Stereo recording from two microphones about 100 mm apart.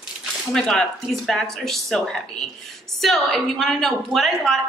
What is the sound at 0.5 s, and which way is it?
Speech, 5° left (ahead or behind).